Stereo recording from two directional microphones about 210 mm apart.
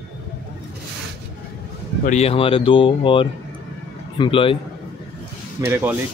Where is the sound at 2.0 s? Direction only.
30° left (ahead or behind).